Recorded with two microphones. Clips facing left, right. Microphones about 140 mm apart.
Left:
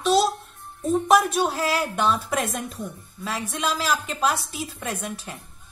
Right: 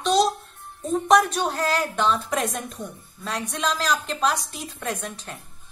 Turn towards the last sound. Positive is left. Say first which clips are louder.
# even
turn(degrees=5)  # may be behind; listen again after turning